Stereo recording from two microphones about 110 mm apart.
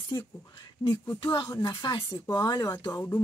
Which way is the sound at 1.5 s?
45° left (ahead or behind).